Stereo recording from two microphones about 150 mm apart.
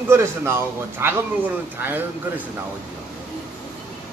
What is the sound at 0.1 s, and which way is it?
Speech, 15° right (ahead or behind).